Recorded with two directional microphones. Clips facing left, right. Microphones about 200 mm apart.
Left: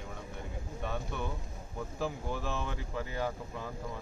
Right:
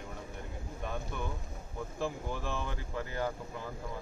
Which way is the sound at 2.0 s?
5° left (ahead or behind).